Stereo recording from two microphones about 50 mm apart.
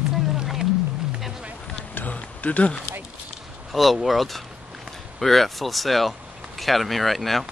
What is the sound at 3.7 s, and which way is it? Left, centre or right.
Speech, centre.